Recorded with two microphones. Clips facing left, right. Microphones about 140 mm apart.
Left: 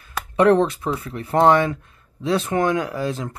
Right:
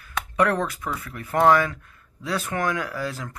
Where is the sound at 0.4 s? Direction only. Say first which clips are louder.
Left 7 dB; 25° left (ahead or behind).